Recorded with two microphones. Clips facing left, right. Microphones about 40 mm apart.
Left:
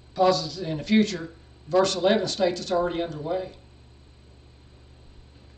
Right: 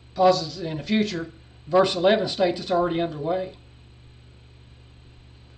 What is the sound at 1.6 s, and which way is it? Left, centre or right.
Speech, centre.